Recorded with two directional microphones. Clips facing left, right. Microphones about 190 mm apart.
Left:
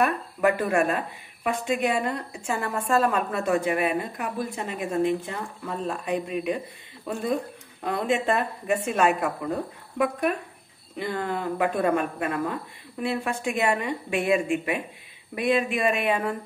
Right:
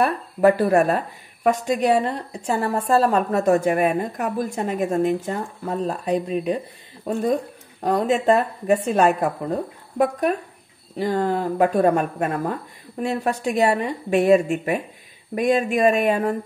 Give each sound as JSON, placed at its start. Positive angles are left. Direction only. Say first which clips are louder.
{"t": 0.0, "sound": "a woman's voice", "louder": "right 5 dB", "side_deg": -35}
{"t": 7.8, "sound": "a woman's voice", "louder": "right 6 dB", "side_deg": -40}